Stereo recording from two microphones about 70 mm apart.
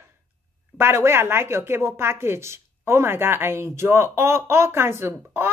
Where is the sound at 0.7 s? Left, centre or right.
Right.